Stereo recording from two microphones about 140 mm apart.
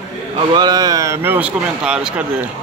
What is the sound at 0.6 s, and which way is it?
Speech, 30° right (ahead or behind).